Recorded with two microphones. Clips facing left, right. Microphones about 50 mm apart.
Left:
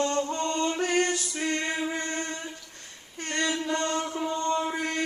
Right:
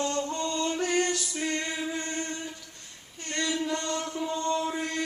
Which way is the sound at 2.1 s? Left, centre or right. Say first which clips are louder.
Left 1 dB; left.